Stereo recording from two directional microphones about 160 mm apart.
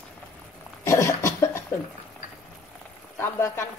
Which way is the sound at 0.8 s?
20° left (ahead or behind).